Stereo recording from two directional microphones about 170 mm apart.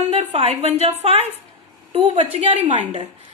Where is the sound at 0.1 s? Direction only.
35° right (ahead or behind).